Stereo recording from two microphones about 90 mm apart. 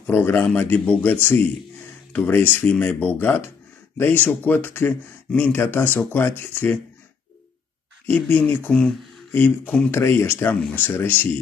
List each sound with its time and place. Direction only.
0.0 s speech: 20° left (ahead or behind)
8.5 s speech: 20° left (ahead or behind)